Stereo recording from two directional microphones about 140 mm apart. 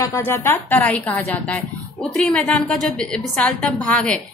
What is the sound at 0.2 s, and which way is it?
A woman's voice, 15° left (ahead or behind).